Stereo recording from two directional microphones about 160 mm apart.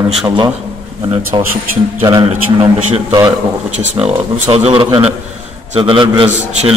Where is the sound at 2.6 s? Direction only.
20° right (ahead or behind).